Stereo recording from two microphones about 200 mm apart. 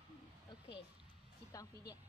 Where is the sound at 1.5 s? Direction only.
15° left (ahead or behind).